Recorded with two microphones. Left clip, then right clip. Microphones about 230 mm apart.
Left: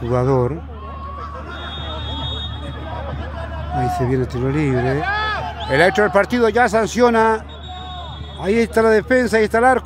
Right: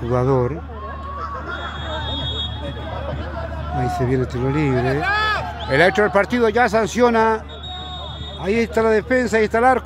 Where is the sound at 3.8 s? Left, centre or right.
Centre.